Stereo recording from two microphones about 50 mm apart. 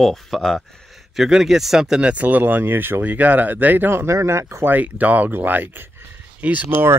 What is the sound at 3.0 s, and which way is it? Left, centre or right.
Speech, right.